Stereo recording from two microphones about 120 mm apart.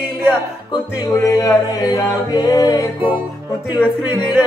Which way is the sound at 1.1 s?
30° left (ahead or behind).